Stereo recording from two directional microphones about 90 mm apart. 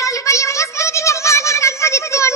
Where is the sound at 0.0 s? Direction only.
35° left (ahead or behind).